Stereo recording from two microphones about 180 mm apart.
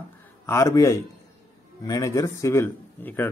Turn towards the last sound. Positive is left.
turn(degrees=10)  # may be behind; listen again after turning